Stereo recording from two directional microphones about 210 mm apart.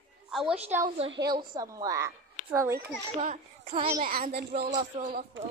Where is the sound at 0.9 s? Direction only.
25° right (ahead or behind).